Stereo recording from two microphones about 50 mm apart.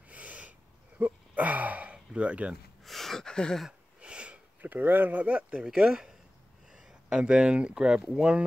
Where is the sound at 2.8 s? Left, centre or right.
Centre.